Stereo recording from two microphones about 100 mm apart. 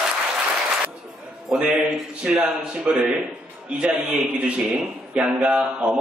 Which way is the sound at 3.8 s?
10° right (ahead or behind).